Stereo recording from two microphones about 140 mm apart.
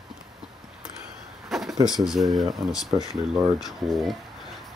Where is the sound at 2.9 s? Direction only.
40° right (ahead or behind).